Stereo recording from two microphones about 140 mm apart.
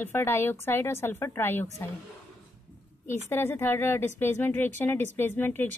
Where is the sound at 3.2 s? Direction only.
15° left (ahead or behind).